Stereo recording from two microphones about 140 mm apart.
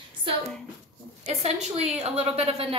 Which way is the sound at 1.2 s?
50° right (ahead or behind).